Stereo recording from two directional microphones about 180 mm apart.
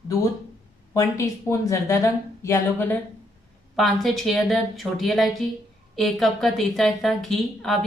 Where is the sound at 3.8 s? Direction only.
Centre (ahead or behind).